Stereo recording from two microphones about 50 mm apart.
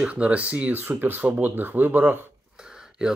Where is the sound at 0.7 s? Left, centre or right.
Right.